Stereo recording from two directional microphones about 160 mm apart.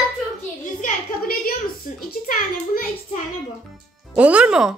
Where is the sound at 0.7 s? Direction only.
60° left (ahead or behind).